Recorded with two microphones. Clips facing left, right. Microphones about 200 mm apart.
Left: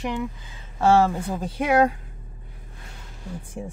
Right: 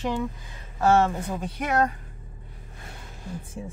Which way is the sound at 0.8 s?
30° left (ahead or behind).